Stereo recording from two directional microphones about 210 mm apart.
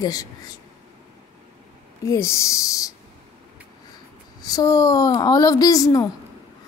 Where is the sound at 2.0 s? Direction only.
15° left (ahead or behind).